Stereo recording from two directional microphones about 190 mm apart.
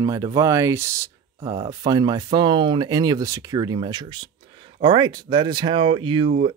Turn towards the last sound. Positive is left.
turn(degrees=-25)  # may be behind; listen again after turning